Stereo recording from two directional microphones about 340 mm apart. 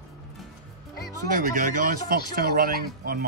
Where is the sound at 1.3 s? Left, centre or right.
Right.